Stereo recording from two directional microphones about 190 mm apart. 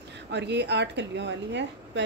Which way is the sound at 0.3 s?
65° right (ahead or behind).